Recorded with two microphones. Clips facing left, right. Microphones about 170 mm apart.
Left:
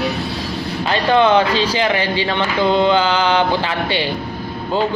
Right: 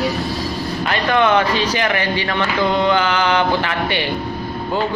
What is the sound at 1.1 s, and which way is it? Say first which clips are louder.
A woman's voice: left 2 dB; 25° left (ahead or behind).